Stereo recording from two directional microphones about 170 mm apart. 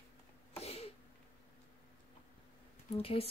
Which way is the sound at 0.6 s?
35° left (ahead or behind).